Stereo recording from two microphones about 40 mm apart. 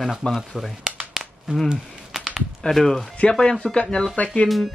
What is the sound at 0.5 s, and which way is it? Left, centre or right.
Speech, centre.